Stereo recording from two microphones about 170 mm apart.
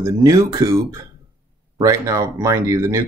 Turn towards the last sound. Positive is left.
turn(degrees=-20)  # may be behind; listen again after turning